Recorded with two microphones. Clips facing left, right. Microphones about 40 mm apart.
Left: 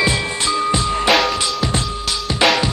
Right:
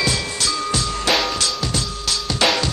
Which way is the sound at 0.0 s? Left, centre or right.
Left.